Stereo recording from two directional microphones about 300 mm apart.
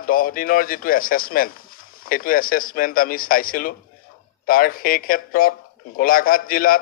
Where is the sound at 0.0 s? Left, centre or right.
Left.